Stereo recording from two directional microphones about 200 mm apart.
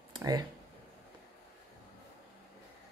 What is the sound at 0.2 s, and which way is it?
Speech, 20° right (ahead or behind).